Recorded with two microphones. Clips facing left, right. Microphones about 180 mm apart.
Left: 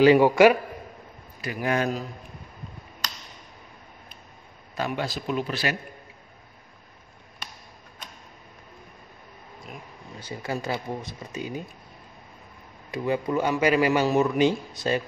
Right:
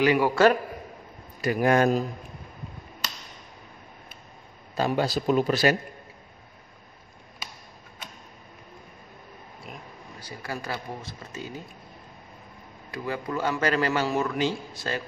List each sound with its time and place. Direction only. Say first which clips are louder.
0.0 s a man's voice: left 6 dB; 30° left (ahead or behind)
1.4 s a man's voice: right 5 dB; 50° right (ahead or behind)
4.7 s speech: right 4 dB; 35° right (ahead or behind)
10.2 s a man's voice: left 4 dB; 20° left (ahead or behind)
12.9 s a man's voice: left 5 dB; 20° left (ahead or behind)